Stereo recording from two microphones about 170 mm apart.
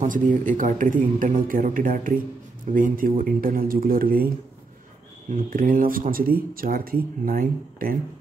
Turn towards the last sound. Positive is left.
turn(degrees=-55)  # may be behind; listen again after turning